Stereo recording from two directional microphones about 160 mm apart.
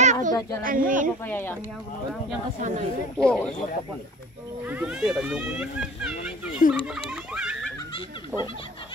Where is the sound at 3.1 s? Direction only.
5° left (ahead or behind).